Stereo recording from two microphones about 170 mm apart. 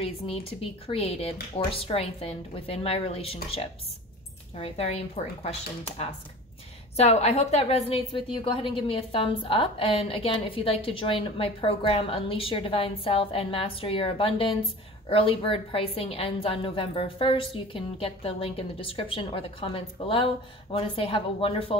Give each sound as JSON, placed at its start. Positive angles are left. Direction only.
{"t": 0.0, "sound": "a woman's voice", "side_deg": 35}
{"t": 4.6, "sound": "a woman's voice", "side_deg": 35}
{"t": 7.0, "sound": "a woman's voice", "side_deg": 40}